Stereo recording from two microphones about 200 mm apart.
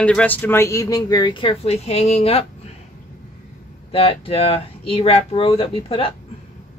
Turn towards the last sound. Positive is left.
turn(degrees=25)  # may be behind; listen again after turning